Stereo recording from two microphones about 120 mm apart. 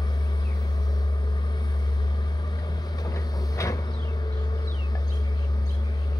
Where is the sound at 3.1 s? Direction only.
30° left (ahead or behind).